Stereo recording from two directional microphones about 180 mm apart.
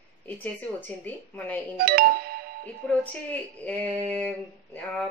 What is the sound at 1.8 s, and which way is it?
Music, 55° right (ahead or behind).